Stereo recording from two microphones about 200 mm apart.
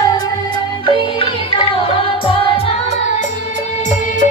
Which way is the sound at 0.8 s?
25° left (ahead or behind).